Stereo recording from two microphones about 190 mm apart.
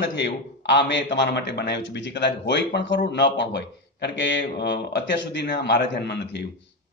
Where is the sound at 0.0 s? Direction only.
65° left (ahead or behind).